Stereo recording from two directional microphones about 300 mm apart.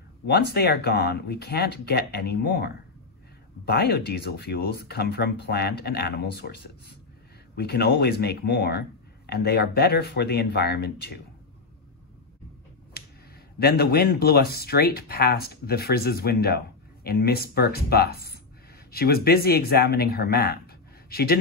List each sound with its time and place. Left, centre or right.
0.3 s speech: left
13.0 s a sound: left
13.6 s speech: left